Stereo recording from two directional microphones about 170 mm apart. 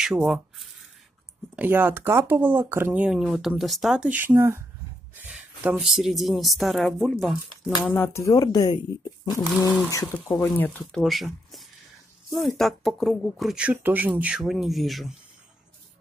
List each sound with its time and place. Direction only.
0.0 s speech: 5° right (ahead or behind)
1.6 s speech: 10° right (ahead or behind)
7.8 s speech: 10° left (ahead or behind)
10.2 s speech: 5° left (ahead or behind)